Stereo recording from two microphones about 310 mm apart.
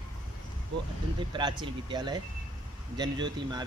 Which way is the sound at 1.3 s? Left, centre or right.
Centre.